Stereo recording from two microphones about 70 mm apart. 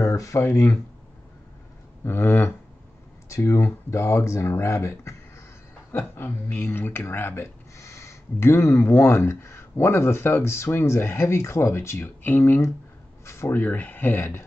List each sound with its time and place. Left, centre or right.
0.0 s speech: left
2.0 s speech: left
3.3 s speech: left
7.7 s speech: left
13.2 s a sound: left
13.6 s speech: left